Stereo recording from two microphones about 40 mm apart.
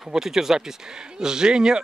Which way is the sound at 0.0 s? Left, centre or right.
Centre.